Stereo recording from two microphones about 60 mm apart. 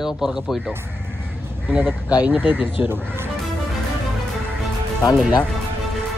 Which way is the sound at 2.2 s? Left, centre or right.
Right.